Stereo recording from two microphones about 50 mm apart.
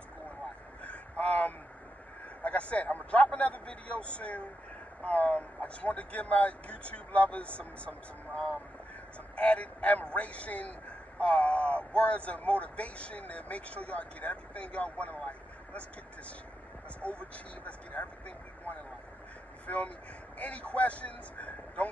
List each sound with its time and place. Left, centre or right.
0.8 s vehicle: left
2.4 s a man's voice: left
9.3 s a man's voice: left
17.0 s a man's voice: left
19.6 s a man's voice: left